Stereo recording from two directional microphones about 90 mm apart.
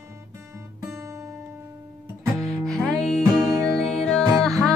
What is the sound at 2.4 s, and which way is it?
Music, 5° left (ahead or behind).